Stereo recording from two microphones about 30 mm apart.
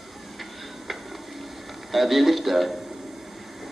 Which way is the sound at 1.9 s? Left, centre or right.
Centre.